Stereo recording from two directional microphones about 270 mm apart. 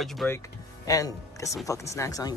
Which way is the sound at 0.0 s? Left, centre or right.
Centre.